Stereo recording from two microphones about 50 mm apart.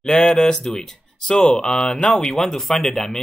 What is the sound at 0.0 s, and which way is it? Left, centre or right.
Speech, centre.